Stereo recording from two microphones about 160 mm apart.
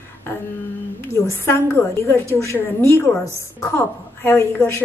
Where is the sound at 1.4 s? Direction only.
15° left (ahead or behind).